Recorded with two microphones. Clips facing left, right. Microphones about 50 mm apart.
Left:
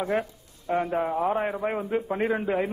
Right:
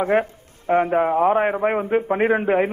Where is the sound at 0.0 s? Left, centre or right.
Right.